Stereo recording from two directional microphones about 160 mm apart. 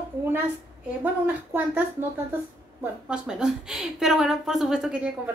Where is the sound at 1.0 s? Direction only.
10° right (ahead or behind).